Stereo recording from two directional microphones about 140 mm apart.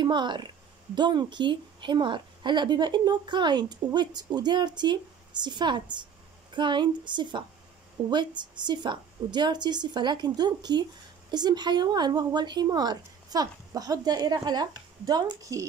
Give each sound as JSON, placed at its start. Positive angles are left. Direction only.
{"t": 0.0, "sound": "a woman's voice", "side_deg": -35}